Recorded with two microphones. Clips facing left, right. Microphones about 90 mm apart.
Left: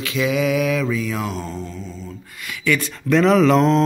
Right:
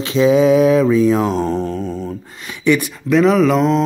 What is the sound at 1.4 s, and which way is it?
Mantra, 65° right (ahead or behind).